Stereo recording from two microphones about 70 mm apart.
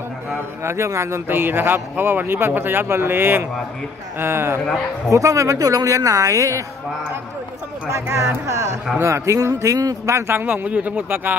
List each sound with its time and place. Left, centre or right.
0.7 s speech: right
5.1 s speech: right
7.9 s speech: right
10.0 s speech: right